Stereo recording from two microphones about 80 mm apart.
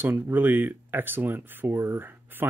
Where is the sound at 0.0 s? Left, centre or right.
Right.